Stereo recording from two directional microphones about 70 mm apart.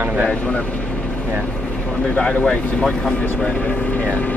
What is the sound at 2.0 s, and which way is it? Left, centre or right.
Speech, centre.